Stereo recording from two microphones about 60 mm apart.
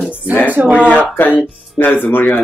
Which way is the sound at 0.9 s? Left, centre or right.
Left.